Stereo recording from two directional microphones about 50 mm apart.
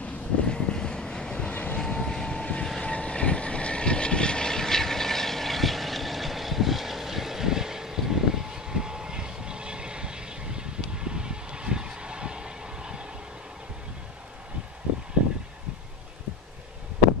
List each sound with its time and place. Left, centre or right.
0.0 s vehicle: centre
1.5 s vehicle: left
1.8 s vehicle: centre
2.8 s vehicle: left; by 13.0 s centre